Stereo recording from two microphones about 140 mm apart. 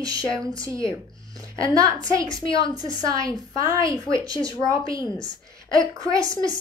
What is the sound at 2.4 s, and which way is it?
Speech, 35° left (ahead or behind).